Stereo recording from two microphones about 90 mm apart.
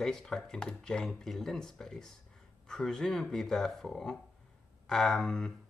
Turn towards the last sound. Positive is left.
turn(degrees=10)  # may be behind; listen again after turning